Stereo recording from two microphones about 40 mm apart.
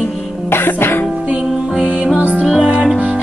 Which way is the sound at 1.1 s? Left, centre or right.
Right.